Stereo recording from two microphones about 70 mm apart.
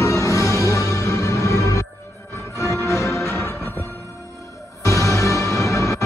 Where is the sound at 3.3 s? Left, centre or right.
Left.